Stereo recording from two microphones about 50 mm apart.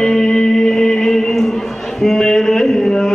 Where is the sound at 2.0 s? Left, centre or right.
Centre.